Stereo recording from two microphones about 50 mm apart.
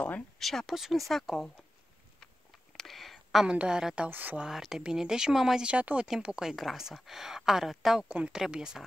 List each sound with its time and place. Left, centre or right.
0.4 s speech: centre
0.7 s speech: centre
2.8 s a sound: centre
3.4 s a woman's voice: centre
4.1 s speech: right
4.4 s speech: centre
5.6 s a woman's voice: right
6.4 s speech: centre